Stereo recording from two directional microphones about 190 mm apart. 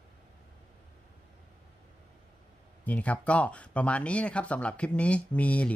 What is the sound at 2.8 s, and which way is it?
Speech, 10° left (ahead or behind).